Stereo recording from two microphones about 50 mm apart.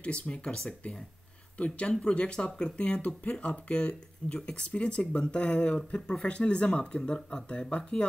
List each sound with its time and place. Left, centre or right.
0.0 s speech: left